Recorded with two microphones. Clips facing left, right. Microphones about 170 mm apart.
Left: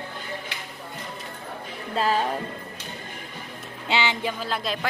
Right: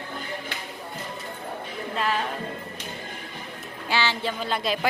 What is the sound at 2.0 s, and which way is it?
Music, 35° left (ahead or behind).